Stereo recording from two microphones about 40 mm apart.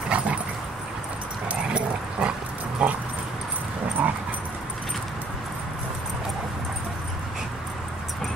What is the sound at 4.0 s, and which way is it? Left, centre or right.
Dog, right.